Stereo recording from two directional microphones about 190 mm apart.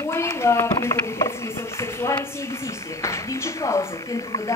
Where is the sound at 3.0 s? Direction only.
15° left (ahead or behind).